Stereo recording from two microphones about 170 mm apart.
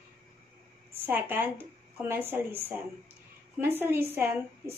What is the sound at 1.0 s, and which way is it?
A woman's voice, 10° right (ahead or behind).